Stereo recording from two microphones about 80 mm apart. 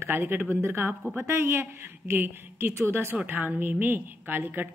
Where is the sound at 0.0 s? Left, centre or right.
Right.